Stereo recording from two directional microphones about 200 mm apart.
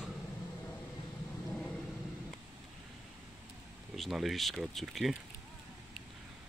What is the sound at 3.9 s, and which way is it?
Speech, centre (ahead or behind).